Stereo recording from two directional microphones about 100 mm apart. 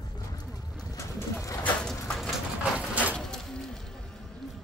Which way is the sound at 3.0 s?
10° left (ahead or behind).